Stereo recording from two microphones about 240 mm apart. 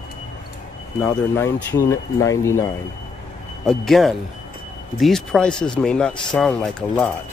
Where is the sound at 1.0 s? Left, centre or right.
Centre.